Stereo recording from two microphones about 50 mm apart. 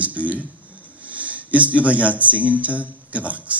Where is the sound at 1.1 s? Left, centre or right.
Right.